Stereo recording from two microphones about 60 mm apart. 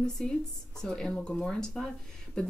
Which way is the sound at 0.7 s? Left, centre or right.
Centre.